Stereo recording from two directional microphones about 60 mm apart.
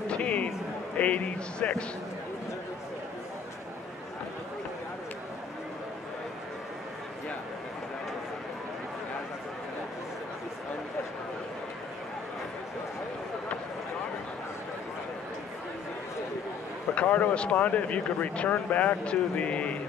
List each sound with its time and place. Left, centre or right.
0.1 s a sound: left
0.9 s speech: left
16.9 s speech: left